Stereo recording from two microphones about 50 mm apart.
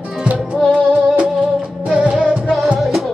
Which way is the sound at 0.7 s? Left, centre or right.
Right.